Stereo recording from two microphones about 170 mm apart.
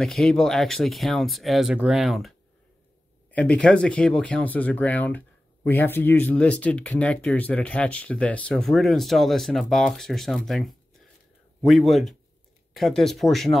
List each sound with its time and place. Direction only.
0.0 s speech: 5° left (ahead or behind)